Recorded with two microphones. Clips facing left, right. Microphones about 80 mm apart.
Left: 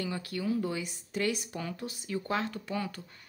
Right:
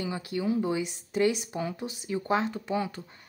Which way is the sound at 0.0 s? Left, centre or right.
Right.